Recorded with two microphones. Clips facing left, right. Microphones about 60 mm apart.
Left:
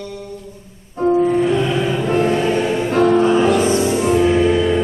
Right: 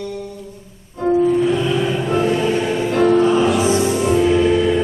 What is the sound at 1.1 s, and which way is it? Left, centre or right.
Music, left.